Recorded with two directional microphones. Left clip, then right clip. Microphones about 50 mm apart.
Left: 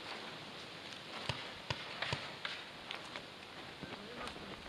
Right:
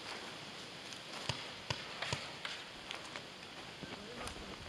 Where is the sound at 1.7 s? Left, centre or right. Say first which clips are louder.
Even; centre.